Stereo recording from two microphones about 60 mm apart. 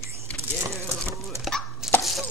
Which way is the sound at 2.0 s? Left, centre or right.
Centre.